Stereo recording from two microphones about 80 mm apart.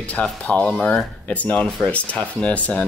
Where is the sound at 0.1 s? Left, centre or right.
Centre.